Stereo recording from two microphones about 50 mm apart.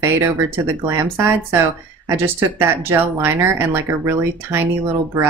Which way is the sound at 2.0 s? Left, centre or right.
Right.